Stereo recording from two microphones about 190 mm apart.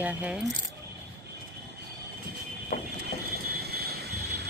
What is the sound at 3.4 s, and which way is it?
Vehicle, 55° right (ahead or behind).